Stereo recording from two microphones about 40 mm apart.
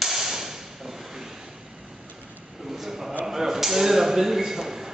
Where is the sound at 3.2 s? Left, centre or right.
Centre.